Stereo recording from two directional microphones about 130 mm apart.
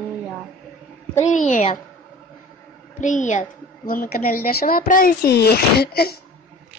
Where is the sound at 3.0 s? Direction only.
75° left (ahead or behind); by 5.1 s 90° left.